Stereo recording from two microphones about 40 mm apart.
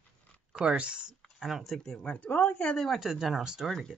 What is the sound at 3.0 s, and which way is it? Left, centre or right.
Speech, centre.